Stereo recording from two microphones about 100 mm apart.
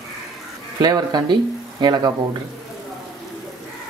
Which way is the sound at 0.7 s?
40° right (ahead or behind).